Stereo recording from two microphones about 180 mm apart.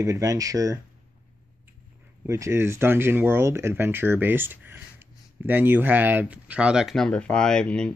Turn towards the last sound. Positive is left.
turn(degrees=5)  # may be behind; listen again after turning